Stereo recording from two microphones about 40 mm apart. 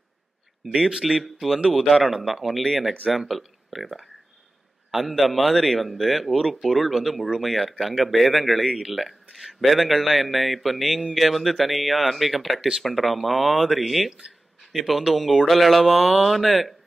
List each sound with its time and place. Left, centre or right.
0.7 s speech: centre